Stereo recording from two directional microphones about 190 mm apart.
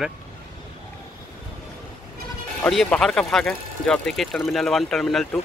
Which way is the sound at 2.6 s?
5° left (ahead or behind).